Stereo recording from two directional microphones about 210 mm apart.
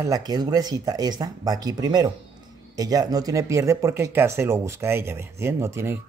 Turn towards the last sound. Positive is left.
turn(degrees=-10)  # may be behind; listen again after turning